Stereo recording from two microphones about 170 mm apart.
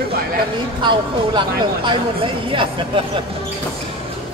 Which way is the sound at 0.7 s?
25° right (ahead or behind).